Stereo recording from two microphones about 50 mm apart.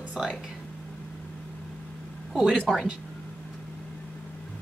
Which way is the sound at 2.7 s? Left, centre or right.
Centre.